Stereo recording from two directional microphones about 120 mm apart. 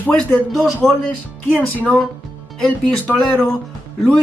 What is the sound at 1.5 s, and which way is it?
Speech, 10° left (ahead or behind).